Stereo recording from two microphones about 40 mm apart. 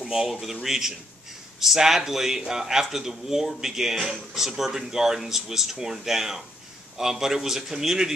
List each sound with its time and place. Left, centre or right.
0.0 s a man's voice: centre